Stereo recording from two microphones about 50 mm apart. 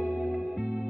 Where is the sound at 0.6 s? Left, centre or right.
Right.